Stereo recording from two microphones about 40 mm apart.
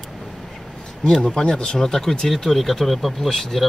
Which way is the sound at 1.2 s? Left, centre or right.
Centre.